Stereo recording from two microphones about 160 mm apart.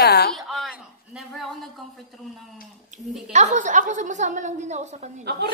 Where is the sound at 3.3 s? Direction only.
50° right (ahead or behind).